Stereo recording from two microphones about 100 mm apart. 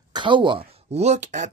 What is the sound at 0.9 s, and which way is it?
Speech, 90° right.